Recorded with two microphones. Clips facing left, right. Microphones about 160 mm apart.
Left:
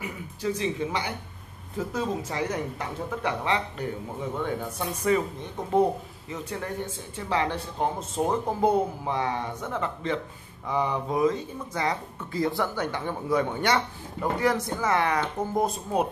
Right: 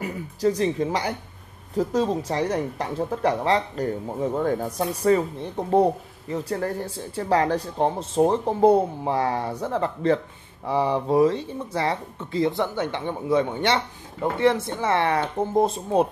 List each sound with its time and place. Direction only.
0.0 s speech: 40° right (ahead or behind)